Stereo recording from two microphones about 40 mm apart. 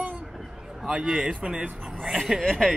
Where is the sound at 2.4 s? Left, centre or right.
Centre.